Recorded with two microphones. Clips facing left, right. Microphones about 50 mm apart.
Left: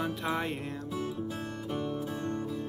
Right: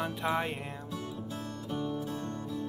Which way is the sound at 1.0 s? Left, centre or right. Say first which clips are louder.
Left 4 dB; centre.